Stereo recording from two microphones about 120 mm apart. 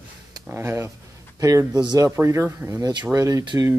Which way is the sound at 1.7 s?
35° right (ahead or behind).